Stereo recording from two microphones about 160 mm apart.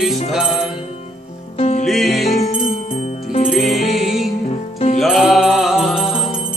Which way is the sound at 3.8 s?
50° left (ahead or behind).